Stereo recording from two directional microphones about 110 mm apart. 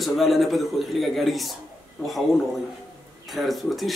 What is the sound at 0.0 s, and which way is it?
Speech, centre (ahead or behind).